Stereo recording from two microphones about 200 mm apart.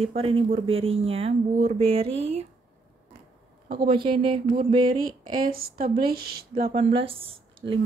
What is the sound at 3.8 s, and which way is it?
Speech, 25° right (ahead or behind).